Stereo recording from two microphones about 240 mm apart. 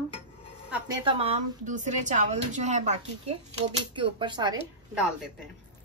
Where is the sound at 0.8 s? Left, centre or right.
Centre.